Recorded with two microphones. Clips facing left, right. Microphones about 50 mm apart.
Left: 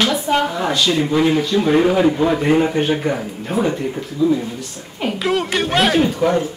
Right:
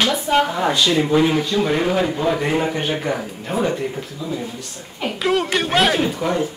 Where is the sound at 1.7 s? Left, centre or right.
Centre.